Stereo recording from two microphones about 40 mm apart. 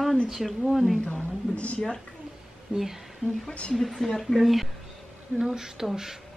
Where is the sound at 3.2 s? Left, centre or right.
Left.